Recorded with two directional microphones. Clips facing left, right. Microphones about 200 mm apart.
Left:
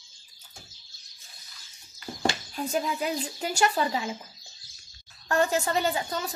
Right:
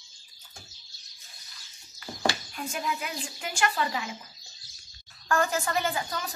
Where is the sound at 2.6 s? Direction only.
35° left (ahead or behind).